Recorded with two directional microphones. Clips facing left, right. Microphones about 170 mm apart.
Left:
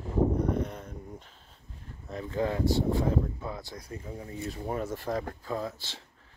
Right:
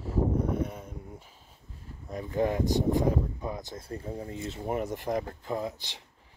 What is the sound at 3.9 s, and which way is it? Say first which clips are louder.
Speech: right 5 dB; 35° right (ahead or behind).